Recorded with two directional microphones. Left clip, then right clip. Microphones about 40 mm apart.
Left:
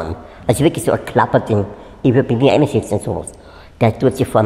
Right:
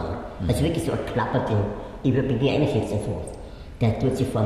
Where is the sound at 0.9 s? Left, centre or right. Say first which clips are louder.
Left 11 dB; left.